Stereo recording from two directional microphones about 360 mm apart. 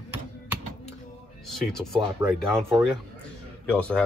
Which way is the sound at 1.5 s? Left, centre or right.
Centre.